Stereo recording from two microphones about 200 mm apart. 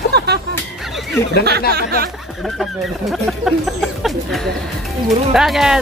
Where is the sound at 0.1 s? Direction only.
55° right (ahead or behind).